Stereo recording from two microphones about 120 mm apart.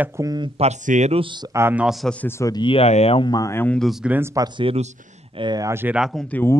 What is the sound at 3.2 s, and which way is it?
Speech, 35° left (ahead or behind).